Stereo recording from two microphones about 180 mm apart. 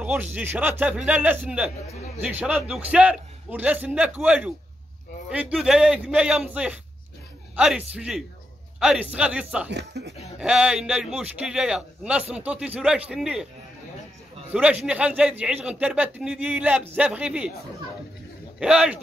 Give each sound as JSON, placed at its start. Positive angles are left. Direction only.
{"t": 0.0, "sound": "a man's voice", "side_deg": -10}
{"t": 9.7, "sound": "speech", "side_deg": -70}
{"t": 10.4, "sound": "a man's voice", "side_deg": -5}
{"t": 14.5, "sound": "a man's voice", "side_deg": -5}
{"t": 18.6, "sound": "a man's voice", "side_deg": -5}